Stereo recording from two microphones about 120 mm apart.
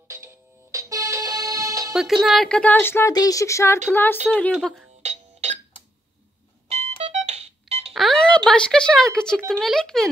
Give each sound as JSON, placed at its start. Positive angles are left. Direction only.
{"t": 0.1, "sound": "music", "side_deg": -25}
{"t": 2.2, "sound": "speech", "side_deg": 5}
{"t": 3.1, "sound": "speech", "side_deg": 30}
{"t": 4.6, "sound": "speech", "side_deg": 0}
{"t": 5.0, "sound": "music", "side_deg": -70}
{"t": 6.7, "sound": "music", "side_deg": -65}
{"t": 7.9, "sound": "music", "side_deg": 0}
{"t": 8.5, "sound": "speech", "side_deg": 5}